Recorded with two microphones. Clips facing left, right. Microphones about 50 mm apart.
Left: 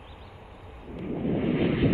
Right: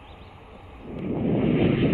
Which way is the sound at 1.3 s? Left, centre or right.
Centre.